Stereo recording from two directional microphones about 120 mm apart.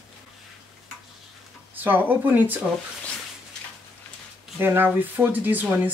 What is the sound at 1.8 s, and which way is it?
Speech, 15° right (ahead or behind).